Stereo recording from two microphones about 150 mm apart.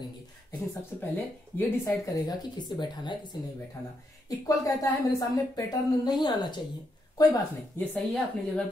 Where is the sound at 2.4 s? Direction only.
30° left (ahead or behind).